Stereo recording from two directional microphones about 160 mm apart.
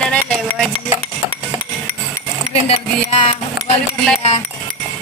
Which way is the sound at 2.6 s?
35° left (ahead or behind).